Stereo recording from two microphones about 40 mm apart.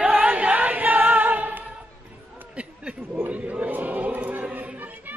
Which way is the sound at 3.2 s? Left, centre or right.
Right.